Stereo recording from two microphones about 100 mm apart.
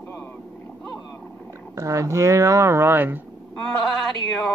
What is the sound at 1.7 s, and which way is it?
Speech, 30° right (ahead or behind).